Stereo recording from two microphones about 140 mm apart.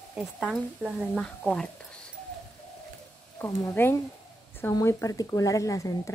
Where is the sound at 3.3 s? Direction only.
15° left (ahead or behind).